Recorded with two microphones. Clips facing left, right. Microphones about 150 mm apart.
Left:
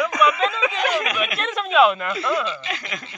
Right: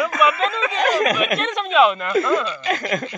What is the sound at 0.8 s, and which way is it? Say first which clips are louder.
Speech: right 7 dB; 40° right (ahead or behind).